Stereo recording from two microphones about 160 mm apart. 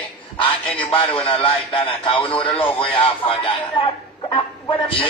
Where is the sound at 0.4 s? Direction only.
10° left (ahead or behind).